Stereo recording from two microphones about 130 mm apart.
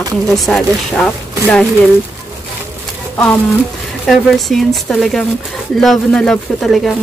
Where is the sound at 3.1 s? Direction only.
10° left (ahead or behind).